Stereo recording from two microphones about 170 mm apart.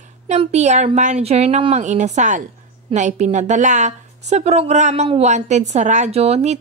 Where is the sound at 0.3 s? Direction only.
40° right (ahead or behind).